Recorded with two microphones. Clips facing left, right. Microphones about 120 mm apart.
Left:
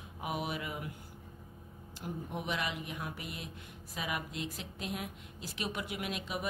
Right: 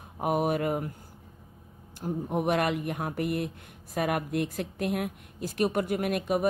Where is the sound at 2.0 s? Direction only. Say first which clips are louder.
Right 11 dB; 50° right (ahead or behind).